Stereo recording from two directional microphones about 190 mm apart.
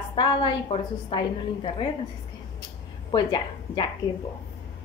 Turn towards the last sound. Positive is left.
turn(degrees=25)  # may be behind; listen again after turning